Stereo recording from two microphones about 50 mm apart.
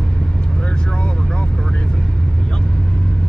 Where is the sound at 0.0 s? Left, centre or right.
Centre.